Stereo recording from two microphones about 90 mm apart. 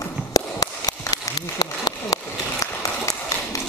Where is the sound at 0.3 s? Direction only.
45° left (ahead or behind).